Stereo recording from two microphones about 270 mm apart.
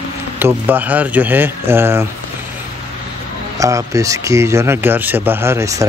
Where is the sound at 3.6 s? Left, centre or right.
Centre.